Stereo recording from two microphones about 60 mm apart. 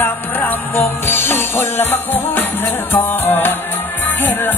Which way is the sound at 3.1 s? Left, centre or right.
Left.